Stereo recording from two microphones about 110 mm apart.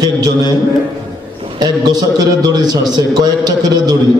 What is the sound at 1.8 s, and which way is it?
A man's voice, 40° right (ahead or behind).